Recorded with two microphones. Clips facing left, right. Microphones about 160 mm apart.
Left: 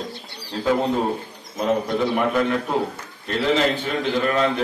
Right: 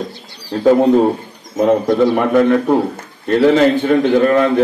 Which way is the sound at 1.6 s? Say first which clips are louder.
Right 9 dB; 65° right (ahead or behind).